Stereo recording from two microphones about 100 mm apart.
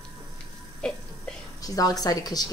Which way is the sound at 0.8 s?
10° left (ahead or behind).